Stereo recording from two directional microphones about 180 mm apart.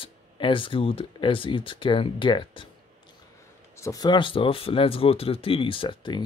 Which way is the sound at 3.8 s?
20° left (ahead or behind).